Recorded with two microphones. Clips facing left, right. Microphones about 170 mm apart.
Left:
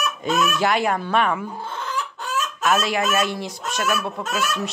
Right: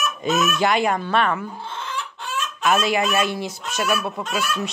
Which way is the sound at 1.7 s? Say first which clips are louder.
Left 2 dB; 40° left (ahead or behind).